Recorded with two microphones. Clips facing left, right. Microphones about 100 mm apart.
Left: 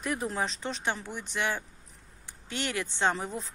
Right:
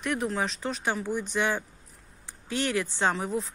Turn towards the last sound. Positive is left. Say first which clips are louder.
# right 2 dB
turn(degrees=-10)  # may be behind; listen again after turning